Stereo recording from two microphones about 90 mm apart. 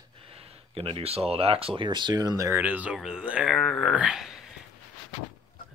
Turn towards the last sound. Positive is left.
turn(degrees=-5)  # may be behind; listen again after turning